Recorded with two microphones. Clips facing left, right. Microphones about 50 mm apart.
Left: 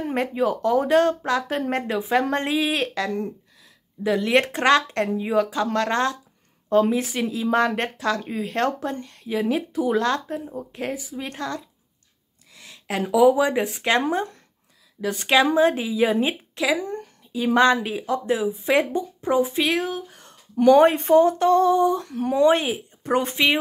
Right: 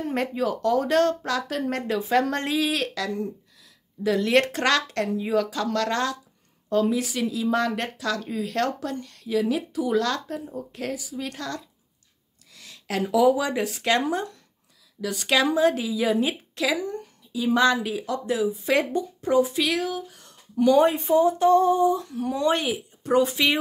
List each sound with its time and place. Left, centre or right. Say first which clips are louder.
0.1 s a woman's voice: left 4 dB; centre; by 20.3 s left
20.5 s female singing: left 4 dB; left
22.3 s a woman's voice: left 5 dB; left